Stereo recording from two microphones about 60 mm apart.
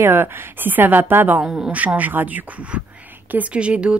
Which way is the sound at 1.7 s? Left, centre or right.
Right.